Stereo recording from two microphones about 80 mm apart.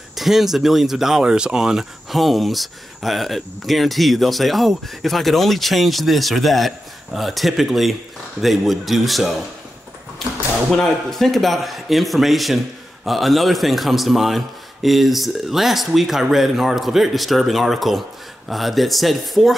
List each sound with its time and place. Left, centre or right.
0.1 s speech: centre
10.7 s speech: centre